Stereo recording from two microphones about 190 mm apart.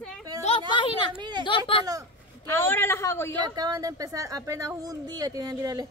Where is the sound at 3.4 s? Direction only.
20° right (ahead or behind).